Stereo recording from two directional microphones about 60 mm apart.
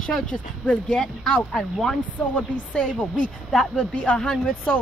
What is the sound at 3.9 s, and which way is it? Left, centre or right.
Speech, centre.